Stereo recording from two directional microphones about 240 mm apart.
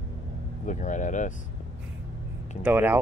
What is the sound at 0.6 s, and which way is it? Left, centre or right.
Speech, left.